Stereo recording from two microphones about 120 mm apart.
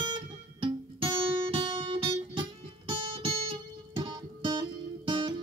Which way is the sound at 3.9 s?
40° right (ahead or behind).